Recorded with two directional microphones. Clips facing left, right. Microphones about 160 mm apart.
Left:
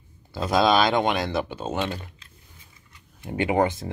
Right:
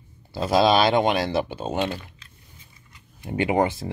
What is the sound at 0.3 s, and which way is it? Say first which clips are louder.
Speech: right 2 dB; 25° right (ahead or behind).